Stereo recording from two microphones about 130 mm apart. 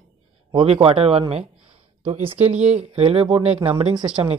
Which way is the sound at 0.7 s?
45° right (ahead or behind).